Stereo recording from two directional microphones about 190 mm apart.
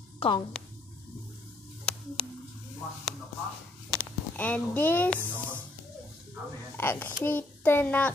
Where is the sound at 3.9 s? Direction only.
5° left (ahead or behind).